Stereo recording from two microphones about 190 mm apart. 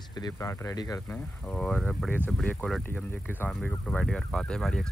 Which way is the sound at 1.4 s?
5° left (ahead or behind).